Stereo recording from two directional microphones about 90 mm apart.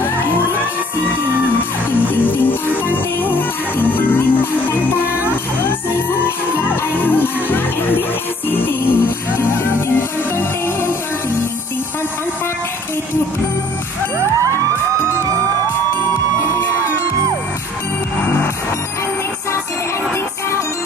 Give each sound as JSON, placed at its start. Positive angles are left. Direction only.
{"t": 1.9, "sound": "music", "side_deg": 20}
{"t": 16.3, "sound": "music", "side_deg": 30}